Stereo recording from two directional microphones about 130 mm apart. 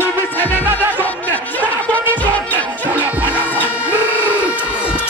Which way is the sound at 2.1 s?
10° left (ahead or behind).